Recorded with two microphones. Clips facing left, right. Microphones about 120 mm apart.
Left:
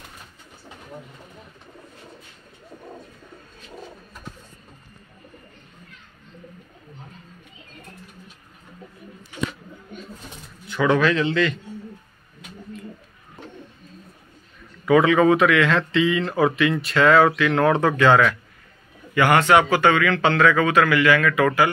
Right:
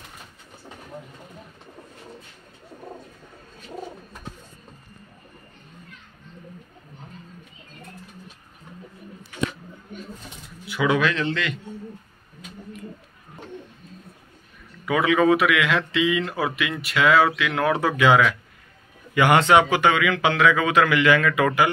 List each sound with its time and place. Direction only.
10.7 s a man's voice: 5° right (ahead or behind)
14.9 s a man's voice: 5° right (ahead or behind)